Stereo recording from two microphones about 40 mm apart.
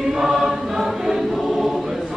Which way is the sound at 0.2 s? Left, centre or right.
Centre.